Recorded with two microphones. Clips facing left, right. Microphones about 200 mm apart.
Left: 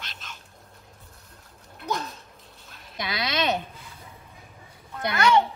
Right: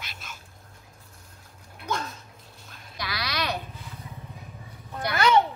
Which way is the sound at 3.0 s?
20° left (ahead or behind).